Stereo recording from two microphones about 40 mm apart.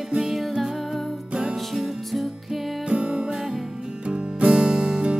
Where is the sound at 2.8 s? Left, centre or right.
Right.